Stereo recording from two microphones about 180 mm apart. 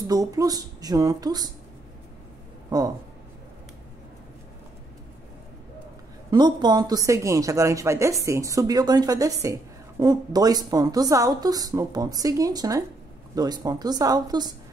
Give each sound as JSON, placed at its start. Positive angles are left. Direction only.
{"t": 0.0, "sound": "speech", "side_deg": -20}
{"t": 6.3, "sound": "speech", "side_deg": -25}